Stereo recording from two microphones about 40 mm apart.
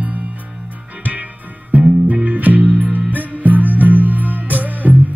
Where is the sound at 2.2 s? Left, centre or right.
Right.